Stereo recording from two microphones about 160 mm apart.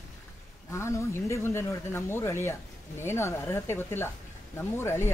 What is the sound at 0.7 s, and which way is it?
Speech, 15° left (ahead or behind).